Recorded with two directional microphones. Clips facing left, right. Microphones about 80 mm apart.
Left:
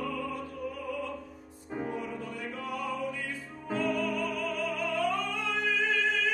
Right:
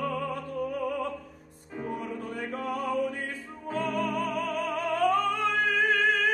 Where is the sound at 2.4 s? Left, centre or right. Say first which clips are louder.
Right 5 dB; right.